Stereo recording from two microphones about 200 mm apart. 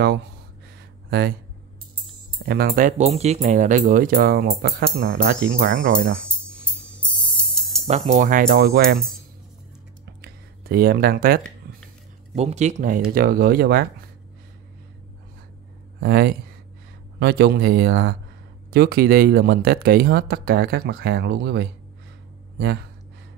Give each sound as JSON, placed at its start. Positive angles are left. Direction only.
{"t": 2.4, "sound": "speech", "side_deg": -50}
{"t": 7.5, "sound": "music", "side_deg": 0}
{"t": 7.8, "sound": "speech", "side_deg": -30}
{"t": 10.2, "sound": "speech", "side_deg": -50}
{"t": 11.6, "sound": "a sound", "side_deg": -50}
{"t": 12.4, "sound": "speech", "side_deg": -35}
{"t": 16.0, "sound": "speech", "side_deg": -50}